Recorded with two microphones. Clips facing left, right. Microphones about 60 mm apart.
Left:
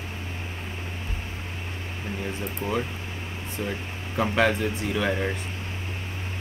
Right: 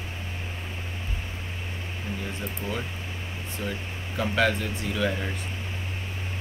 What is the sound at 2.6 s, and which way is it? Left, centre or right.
Speech, left.